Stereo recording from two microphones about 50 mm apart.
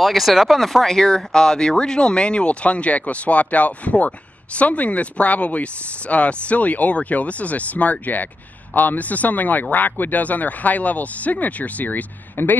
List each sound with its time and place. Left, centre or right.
0.0 s speech: centre; by 12.5 s left